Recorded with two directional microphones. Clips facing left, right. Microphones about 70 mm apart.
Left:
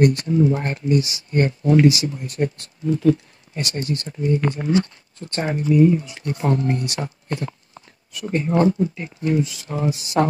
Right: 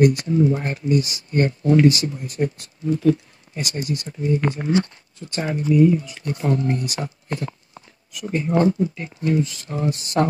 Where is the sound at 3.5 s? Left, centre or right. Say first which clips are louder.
Left 1 dB; centre.